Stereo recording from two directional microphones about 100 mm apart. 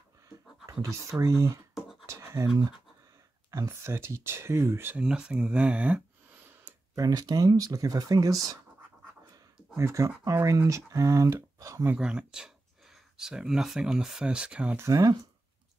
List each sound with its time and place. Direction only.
1.2 s speech: 30° right (ahead or behind)
2.0 s scratch: 30° right (ahead or behind)
3.4 s speech: 30° right (ahead or behind)
5.0 s speech: 10° right (ahead or behind)
6.7 s tick-tock: 15° right (ahead or behind)
7.0 s speech: 40° right (ahead or behind)
9.8 s speech: 30° right (ahead or behind)
11.9 s speech: 10° right (ahead or behind)
14.8 s speech: 35° right (ahead or behind)